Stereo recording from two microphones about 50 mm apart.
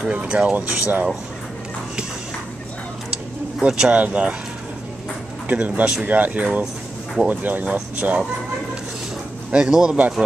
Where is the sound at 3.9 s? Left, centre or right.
Right.